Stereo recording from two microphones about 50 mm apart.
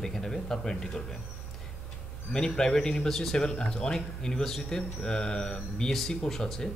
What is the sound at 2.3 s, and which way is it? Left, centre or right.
Speech, centre.